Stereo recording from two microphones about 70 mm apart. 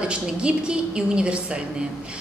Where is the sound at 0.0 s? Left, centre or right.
Centre.